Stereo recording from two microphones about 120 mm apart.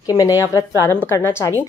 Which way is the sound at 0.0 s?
30° left (ahead or behind).